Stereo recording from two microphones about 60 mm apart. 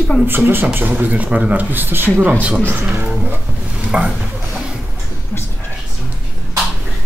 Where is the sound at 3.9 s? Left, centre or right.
Centre.